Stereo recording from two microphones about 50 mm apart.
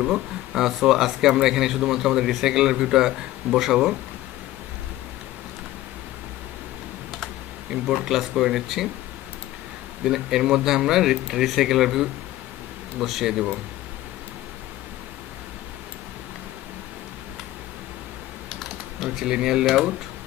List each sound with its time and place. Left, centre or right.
0.0 s speech: centre
7.8 s speech: centre
10.0 s speech: centre
18.5 s typing: centre
19.0 s speech: centre